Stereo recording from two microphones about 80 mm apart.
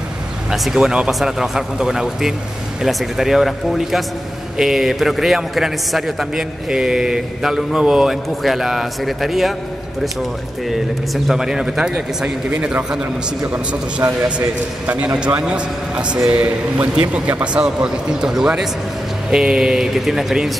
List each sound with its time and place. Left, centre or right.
0.5 s a man's voice: centre
11.2 s a man's voice: centre